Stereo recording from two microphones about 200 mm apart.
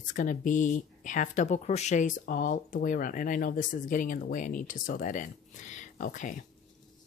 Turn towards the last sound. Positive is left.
turn(degrees=40)  # may be behind; listen again after turning